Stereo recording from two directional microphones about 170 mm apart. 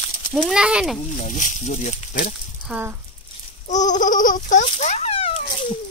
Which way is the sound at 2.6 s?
10° right (ahead or behind).